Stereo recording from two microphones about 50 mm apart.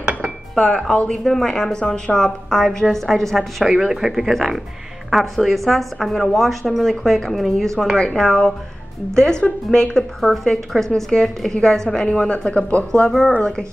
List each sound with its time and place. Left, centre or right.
0.0 s dishes: centre
0.6 s a woman's voice: centre
8.0 s a woman's voice: centre
8.3 s a woman's voice: centre
9.1 s a woman's voice: centre
10.3 s a woman's voice: centre